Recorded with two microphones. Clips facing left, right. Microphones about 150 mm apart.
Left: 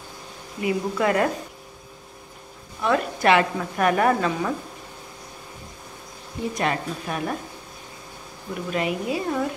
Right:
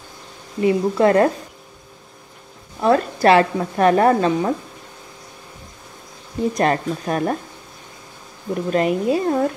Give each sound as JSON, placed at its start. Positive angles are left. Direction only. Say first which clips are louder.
{"t": 0.6, "sound": "a woman's voice", "louder": "right 7 dB", "side_deg": -35}
{"t": 2.8, "sound": "a woman's voice", "louder": "right 6 dB", "side_deg": -35}
{"t": 6.5, "sound": "a woman's voice", "louder": "right 6 dB", "side_deg": -40}
{"t": 8.6, "sound": "a woman's voice", "louder": "right 7 dB", "side_deg": -40}